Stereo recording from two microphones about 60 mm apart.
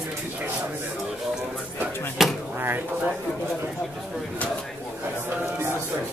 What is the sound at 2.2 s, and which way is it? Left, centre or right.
Speech, centre.